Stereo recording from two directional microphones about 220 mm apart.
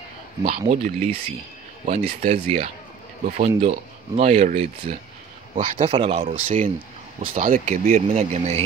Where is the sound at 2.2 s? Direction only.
30° right (ahead or behind).